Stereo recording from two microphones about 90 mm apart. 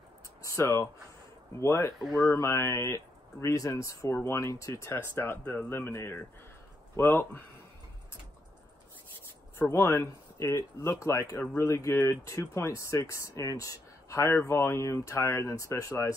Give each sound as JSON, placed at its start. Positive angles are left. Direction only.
{"t": 0.4, "sound": "a sound", "side_deg": 30}
{"t": 1.6, "sound": "speech", "side_deg": 30}
{"t": 9.6, "sound": "speech", "side_deg": 30}